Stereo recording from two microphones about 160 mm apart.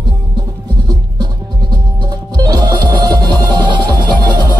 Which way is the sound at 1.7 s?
25° right (ahead or behind).